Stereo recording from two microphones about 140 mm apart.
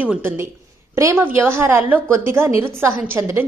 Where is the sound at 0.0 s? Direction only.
15° right (ahead or behind).